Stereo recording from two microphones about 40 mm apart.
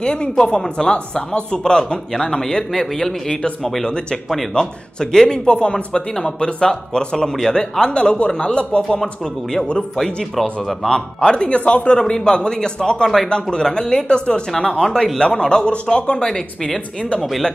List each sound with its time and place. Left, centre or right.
0.0 s speech: left
5.1 s speech: centre
7.3 s speech: centre; by 8.3 s left
8.3 s speech: centre
16.3 s speech: centre